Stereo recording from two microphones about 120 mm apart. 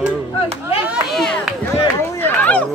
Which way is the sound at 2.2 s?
10° left (ahead or behind).